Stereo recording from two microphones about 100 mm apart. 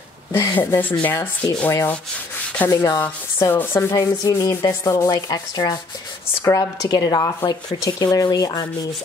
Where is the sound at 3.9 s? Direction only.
35° left (ahead or behind).